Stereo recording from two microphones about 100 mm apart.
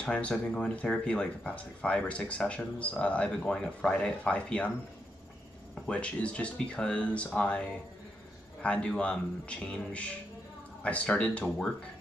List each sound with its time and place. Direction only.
0.0 s speech: 10° left (ahead or behind)
5.9 s speech: 10° left (ahead or behind)